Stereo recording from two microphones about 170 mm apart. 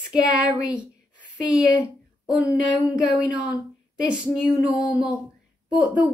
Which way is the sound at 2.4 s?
20° left (ahead or behind).